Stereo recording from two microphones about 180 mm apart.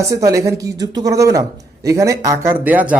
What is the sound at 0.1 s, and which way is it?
Speech, 20° right (ahead or behind).